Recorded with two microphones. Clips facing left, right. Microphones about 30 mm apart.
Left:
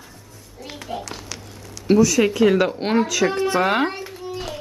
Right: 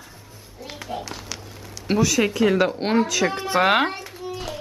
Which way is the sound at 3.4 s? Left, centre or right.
Centre.